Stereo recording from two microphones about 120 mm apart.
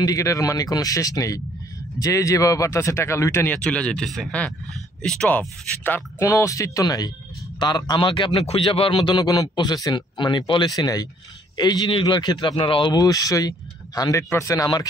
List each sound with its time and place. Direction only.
0.0 s speech: 30° left (ahead or behind)
3.5 s speech: 10° left (ahead or behind)
6.2 s a man's voice: 25° left (ahead or behind); by 12.9 s 45° left (ahead or behind)
12.9 s a man's voice: 30° left (ahead or behind)